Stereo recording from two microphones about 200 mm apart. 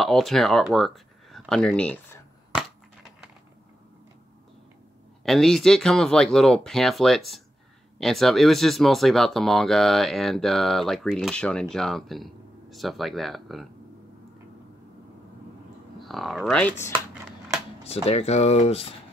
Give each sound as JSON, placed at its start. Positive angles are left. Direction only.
{"t": 0.0, "sound": "speech", "side_deg": 0}
{"t": 2.5, "sound": "a sound", "side_deg": -5}
{"t": 5.2, "sound": "speech", "side_deg": 0}
{"t": 16.0, "sound": "speech", "side_deg": 0}
{"t": 17.8, "sound": "speech", "side_deg": 30}